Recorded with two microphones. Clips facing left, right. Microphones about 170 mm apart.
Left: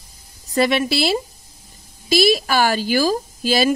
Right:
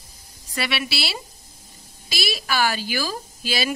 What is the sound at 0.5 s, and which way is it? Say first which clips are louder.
A woman's voice: left 10 dB; 45° left (ahead or behind).